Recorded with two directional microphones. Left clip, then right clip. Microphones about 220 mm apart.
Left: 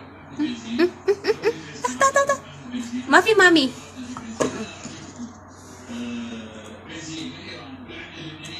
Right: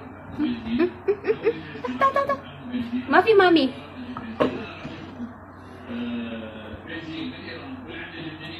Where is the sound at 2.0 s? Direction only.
40° left (ahead or behind).